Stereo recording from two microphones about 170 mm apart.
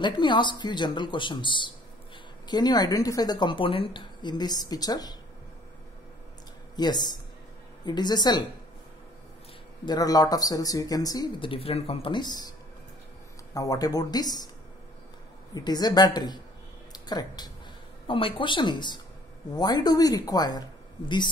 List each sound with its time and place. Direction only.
0.0 s a woman's voice: 25° left (ahead or behind)
6.8 s a woman's voice: 25° left (ahead or behind)
9.8 s a woman's voice: 20° left (ahead or behind)
13.6 s a woman's voice: 20° left (ahead or behind)
15.5 s a woman's voice: 25° left (ahead or behind)